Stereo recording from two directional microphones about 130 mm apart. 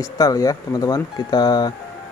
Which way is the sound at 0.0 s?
25° left (ahead or behind).